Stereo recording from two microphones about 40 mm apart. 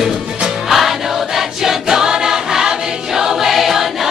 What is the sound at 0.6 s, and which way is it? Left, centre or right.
Choir, centre.